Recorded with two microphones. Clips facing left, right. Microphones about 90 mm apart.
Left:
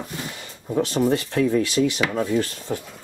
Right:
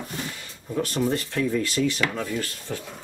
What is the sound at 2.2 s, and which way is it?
Speech, 30° left (ahead or behind).